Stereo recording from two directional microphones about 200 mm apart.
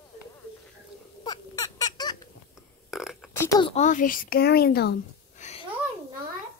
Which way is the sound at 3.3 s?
10° left (ahead or behind).